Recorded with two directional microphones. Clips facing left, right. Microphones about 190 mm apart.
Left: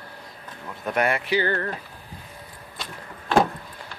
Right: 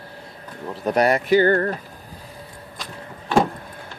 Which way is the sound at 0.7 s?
35° right (ahead or behind).